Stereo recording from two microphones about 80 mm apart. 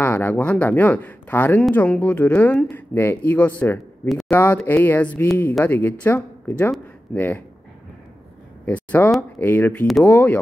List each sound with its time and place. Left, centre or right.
0.0 s speech: left
8.6 s speech: left